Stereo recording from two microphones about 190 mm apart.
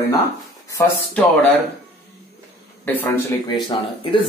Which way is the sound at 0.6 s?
15° left (ahead or behind).